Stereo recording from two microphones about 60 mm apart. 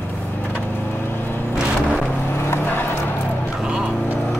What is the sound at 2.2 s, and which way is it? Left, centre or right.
Music, left.